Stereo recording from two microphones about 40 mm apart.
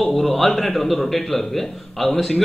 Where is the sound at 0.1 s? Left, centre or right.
Centre.